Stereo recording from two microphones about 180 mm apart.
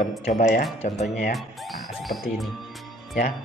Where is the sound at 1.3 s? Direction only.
Centre (ahead or behind).